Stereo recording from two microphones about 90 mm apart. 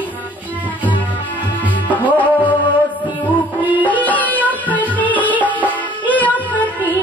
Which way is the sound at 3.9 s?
15° left (ahead or behind).